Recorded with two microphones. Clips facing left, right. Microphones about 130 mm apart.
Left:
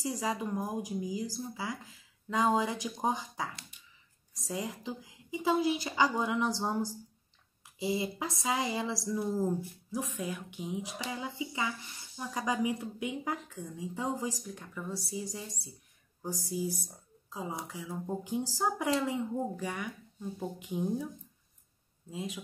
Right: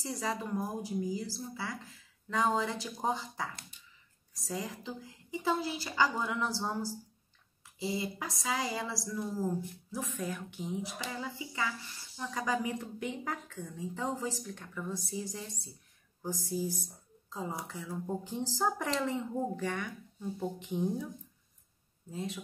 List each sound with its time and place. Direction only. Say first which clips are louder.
0.2 s speech: right 3 dB; 15° left (ahead or behind)
4.5 s a woman's voice: left 2 dB; 20° left (ahead or behind)
17.3 s speech: even; 20° left (ahead or behind)
22.1 s speech: even; 10° left (ahead or behind)